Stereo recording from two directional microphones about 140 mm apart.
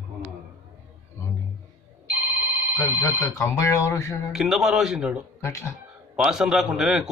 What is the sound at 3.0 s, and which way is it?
Speech, 25° left (ahead or behind).